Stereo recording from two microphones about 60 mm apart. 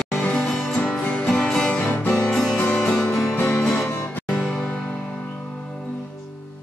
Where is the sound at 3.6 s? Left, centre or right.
Centre.